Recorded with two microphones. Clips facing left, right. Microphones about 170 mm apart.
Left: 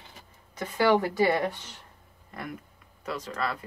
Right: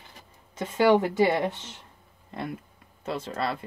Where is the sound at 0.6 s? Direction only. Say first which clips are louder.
Right 3 dB; 25° right (ahead or behind).